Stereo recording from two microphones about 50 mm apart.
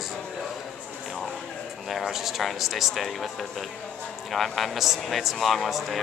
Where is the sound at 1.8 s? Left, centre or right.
Centre.